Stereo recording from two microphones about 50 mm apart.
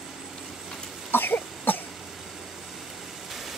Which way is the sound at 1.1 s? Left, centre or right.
Left.